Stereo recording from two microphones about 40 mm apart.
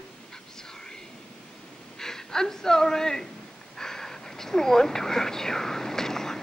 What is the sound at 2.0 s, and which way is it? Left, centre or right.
Speech, centre.